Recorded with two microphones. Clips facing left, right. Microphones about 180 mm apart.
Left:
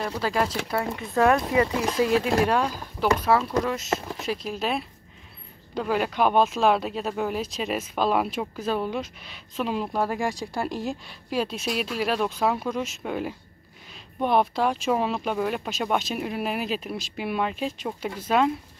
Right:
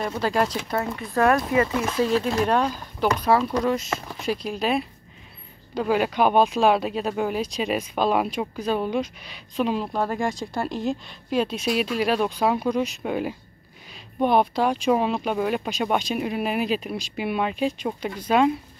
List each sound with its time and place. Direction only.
0.0 s speech: centre (ahead or behind)
0.9 s speech: 15° left (ahead or behind)
2.4 s speech: 5° left (ahead or behind)